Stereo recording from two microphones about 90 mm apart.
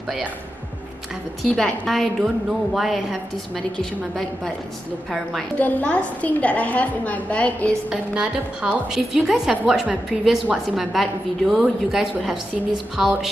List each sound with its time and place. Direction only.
1.5 s a woman's voice: 5° left (ahead or behind)
5.6 s a woman's voice: 15° left (ahead or behind)
7.9 s a woman's voice: 10° right (ahead or behind)